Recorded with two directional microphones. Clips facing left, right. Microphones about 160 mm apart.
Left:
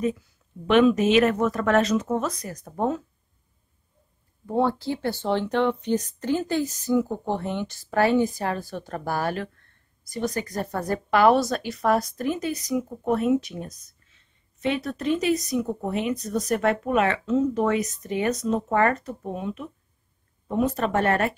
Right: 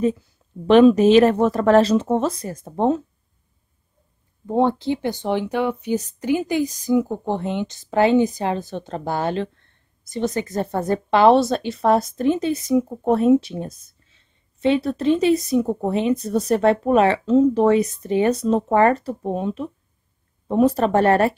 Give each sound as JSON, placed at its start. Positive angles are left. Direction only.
{"t": 0.7, "sound": "speech", "side_deg": -35}
{"t": 4.5, "sound": "a woman's voice", "side_deg": -20}